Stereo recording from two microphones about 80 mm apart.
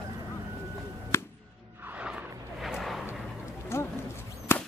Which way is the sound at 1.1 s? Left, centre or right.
Left.